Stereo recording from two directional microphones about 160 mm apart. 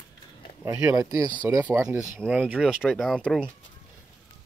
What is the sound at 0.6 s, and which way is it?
Speech, 20° right (ahead or behind).